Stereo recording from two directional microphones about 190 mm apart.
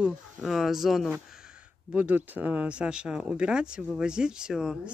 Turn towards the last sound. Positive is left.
turn(degrees=-5)  # may be behind; listen again after turning